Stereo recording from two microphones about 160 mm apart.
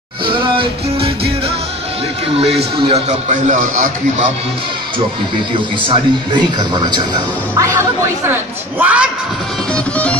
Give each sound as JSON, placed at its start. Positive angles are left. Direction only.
{"t": 0.3, "sound": "music", "side_deg": -30}
{"t": 2.3, "sound": "a man's voice", "side_deg": -40}
{"t": 5.8, "sound": "speech", "side_deg": -30}